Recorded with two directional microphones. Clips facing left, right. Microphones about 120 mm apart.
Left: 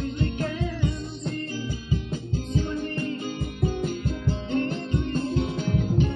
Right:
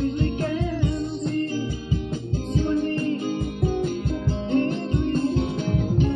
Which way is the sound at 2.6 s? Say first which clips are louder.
Right 6 dB; 35° right (ahead or behind).